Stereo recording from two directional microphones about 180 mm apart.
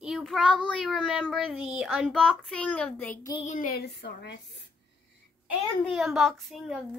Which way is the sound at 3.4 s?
50° left (ahead or behind).